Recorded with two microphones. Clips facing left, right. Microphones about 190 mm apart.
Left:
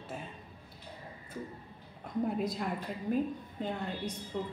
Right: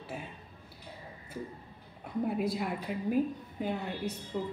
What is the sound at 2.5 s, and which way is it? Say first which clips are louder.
A woman's voice: right 2 dB; 5° right (ahead or behind).